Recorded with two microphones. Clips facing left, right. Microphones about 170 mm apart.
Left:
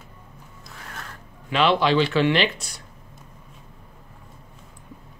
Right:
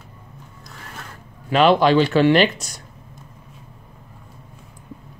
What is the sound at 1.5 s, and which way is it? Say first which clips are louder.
Speech: right 5 dB; 45° right (ahead or behind).